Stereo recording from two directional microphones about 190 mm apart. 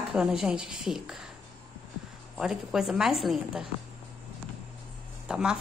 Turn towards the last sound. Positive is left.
turn(degrees=-5)  # may be behind; listen again after turning